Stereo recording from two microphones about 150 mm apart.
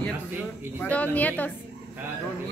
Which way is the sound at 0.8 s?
10° left (ahead or behind).